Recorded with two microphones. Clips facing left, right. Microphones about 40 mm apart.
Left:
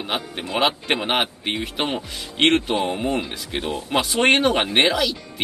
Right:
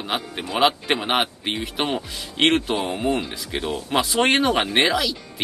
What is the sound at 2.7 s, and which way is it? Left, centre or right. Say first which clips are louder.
Speech: even; left.